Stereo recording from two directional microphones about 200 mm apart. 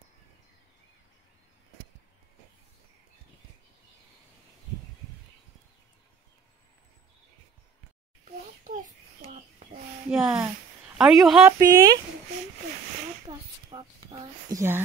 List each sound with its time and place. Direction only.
10.0 s a woman's voice: 5° right (ahead or behind)
11.5 s speech: 15° right (ahead or behind)
13.3 s a sound: 20° right (ahead or behind)